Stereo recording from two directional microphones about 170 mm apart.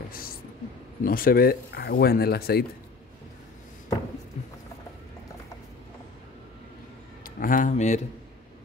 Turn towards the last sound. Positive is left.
turn(degrees=45)  # may be behind; listen again after turning